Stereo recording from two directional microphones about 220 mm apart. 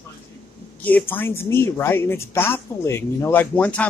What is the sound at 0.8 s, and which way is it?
A man's voice, 10° left (ahead or behind).